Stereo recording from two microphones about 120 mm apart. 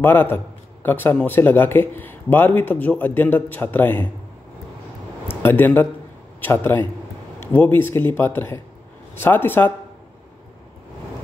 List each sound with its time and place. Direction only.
0.0 s speech: 15° left (ahead or behind)
5.3 s speech: 15° left (ahead or behind)